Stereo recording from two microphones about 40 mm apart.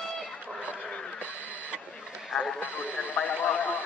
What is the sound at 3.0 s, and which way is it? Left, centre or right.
Speech, left.